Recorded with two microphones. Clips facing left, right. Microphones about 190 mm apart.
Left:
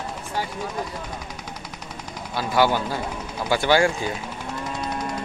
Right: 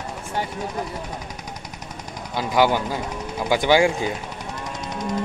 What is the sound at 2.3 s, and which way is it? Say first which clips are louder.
Speech: right 1 dB; 15° right (ahead or behind).